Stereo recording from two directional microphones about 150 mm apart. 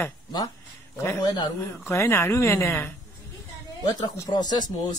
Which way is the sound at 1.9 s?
15° left (ahead or behind).